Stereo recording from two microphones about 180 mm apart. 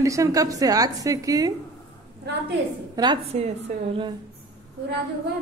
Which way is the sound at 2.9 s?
25° right (ahead or behind).